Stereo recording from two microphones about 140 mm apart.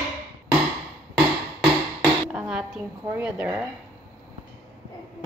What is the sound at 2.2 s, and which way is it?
Speech, 5° right (ahead or behind).